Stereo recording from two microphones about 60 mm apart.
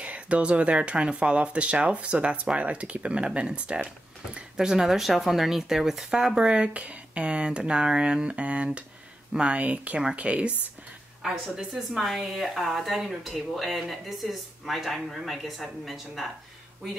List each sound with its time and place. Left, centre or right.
0.0 s speech: right
11.5 s speech: centre